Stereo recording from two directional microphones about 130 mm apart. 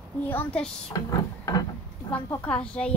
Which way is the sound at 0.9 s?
30° left (ahead or behind).